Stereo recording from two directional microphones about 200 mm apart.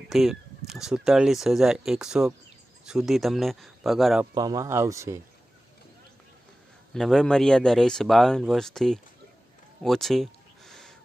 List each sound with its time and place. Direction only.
0.1 s speech: centre (ahead or behind)
4.3 s speech: 20° right (ahead or behind)
6.9 s speech: centre (ahead or behind)
9.8 s a sound: centre (ahead or behind)